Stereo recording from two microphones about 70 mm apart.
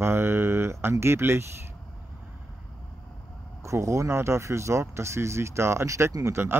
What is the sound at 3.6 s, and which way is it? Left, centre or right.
Speech, right.